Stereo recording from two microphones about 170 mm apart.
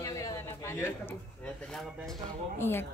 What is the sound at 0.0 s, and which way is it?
Speech, 20° left (ahead or behind).